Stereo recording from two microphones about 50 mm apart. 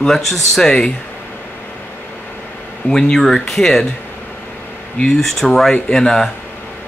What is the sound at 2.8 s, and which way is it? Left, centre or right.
Speech, centre.